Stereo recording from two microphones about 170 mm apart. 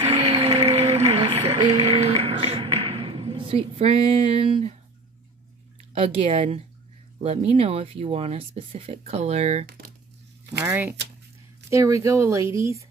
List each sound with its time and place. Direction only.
0.0 s music: 35° right (ahead or behind)
5.9 s speech: 35° right (ahead or behind)
10.6 s speech: 10° right (ahead or behind)